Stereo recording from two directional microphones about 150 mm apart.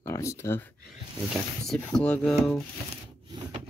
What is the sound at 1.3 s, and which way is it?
Speech, centre (ahead or behind).